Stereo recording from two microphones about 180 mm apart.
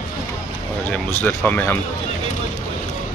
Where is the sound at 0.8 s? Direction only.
10° left (ahead or behind).